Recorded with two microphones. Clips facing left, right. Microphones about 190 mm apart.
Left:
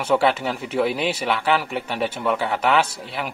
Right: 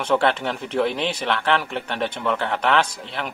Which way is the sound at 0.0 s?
5° left (ahead or behind).